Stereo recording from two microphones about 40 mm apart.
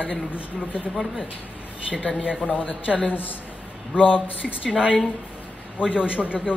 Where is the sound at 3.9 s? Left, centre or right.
Right.